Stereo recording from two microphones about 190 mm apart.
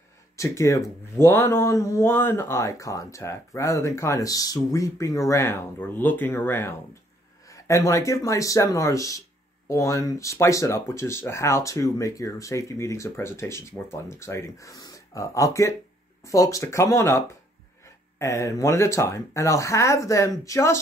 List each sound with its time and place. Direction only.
0.4 s speech: 15° left (ahead or behind)